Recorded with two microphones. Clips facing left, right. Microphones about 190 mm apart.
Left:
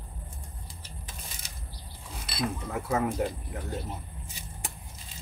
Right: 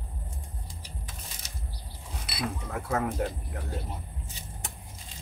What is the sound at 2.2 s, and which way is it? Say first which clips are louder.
Speech: left 2 dB; 5° right (ahead or behind).